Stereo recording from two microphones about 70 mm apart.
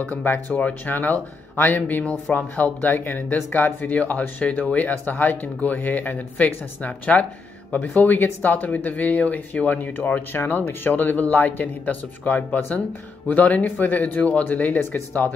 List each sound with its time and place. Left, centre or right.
0.1 s speech: left